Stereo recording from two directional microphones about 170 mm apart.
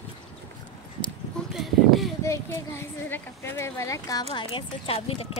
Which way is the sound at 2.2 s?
15° left (ahead or behind).